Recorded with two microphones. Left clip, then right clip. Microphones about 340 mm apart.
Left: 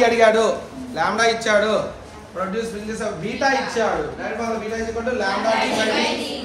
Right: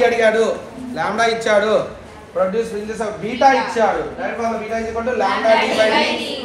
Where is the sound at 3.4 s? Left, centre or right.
Centre.